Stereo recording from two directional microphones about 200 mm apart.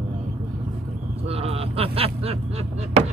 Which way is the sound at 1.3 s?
30° right (ahead or behind).